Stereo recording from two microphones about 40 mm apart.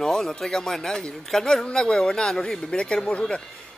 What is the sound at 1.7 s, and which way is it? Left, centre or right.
A man's voice, centre.